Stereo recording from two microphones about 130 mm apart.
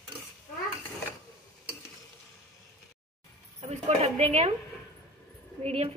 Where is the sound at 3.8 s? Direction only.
55° right (ahead or behind).